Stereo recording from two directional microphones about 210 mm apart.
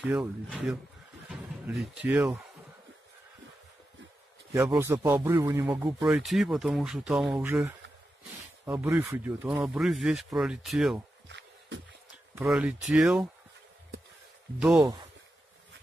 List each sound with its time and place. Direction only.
0.0 s speech: 5° right (ahead or behind)
4.6 s a man's voice: 15° right (ahead or behind)
6.0 s speech: centre (ahead or behind)
8.6 s a man's voice: 15° right (ahead or behind)
11.2 s a sound: 55° right (ahead or behind)
12.4 s speech: 5° right (ahead or behind)
14.8 s a man's voice: 15° right (ahead or behind)